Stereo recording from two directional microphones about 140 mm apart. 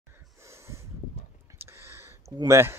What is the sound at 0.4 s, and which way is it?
Snort, 20° right (ahead or behind).